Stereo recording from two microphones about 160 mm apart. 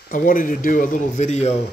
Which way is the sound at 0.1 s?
60° left (ahead or behind).